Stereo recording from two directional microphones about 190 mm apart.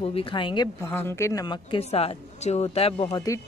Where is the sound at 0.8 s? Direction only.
10° left (ahead or behind).